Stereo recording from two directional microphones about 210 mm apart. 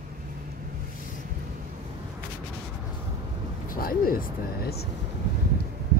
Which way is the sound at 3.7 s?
45° left (ahead or behind).